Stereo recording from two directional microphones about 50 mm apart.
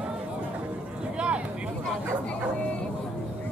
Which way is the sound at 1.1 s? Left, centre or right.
Right.